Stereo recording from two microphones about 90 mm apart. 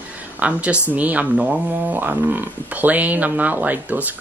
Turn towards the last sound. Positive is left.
turn(degrees=-20)  # may be behind; listen again after turning